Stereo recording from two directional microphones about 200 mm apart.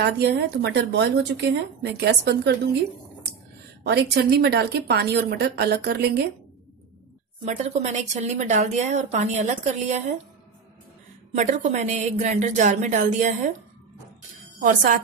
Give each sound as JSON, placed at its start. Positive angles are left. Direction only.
{"t": 0.0, "sound": "a woman's voice", "side_deg": -55}
{"t": 3.8, "sound": "a woman's voice", "side_deg": -55}
{"t": 7.4, "sound": "a woman's voice", "side_deg": -35}
{"t": 11.3, "sound": "a woman's voice", "side_deg": -40}